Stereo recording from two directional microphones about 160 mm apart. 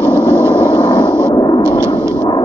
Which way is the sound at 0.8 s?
25° left (ahead or behind).